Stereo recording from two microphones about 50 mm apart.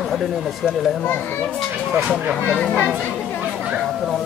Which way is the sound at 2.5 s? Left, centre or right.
Left.